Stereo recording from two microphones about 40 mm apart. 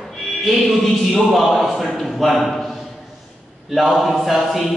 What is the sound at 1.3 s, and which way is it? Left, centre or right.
A man's voice, centre.